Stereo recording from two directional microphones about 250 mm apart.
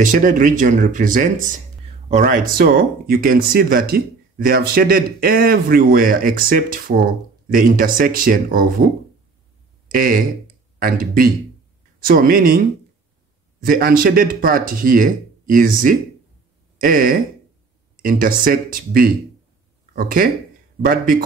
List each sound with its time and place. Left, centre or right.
0.0 s speech: right
13.7 s speech: right